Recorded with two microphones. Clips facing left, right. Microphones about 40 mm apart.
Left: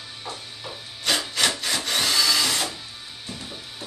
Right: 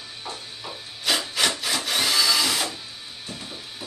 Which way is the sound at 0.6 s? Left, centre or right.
Centre.